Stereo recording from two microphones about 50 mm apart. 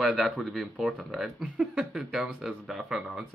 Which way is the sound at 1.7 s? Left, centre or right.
Centre.